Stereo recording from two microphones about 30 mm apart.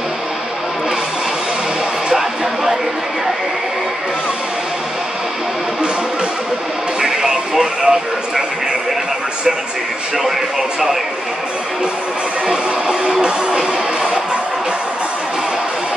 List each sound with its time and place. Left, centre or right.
2.1 s a sound: centre
7.0 s music: right
12.4 s music: right